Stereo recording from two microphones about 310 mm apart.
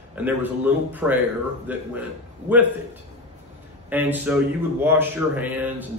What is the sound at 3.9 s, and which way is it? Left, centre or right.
A man's voice, centre.